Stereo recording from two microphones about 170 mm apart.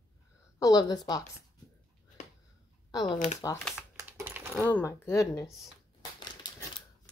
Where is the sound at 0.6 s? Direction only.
20° left (ahead or behind).